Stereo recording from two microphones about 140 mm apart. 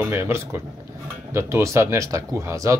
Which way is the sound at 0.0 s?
20° right (ahead or behind).